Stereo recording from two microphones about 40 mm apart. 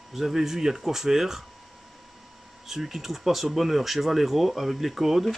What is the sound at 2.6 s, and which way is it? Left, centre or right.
Speech, centre.